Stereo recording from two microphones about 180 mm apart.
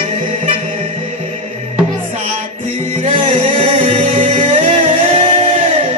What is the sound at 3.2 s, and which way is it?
Music, 30° right (ahead or behind).